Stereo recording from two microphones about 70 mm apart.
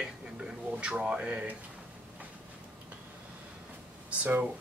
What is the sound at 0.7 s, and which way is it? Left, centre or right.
Speech, centre.